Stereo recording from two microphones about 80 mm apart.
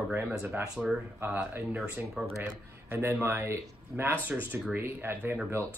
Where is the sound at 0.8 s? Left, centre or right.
Centre.